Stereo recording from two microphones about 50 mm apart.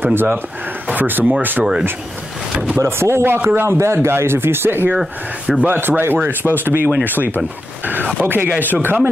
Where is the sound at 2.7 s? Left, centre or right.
Right.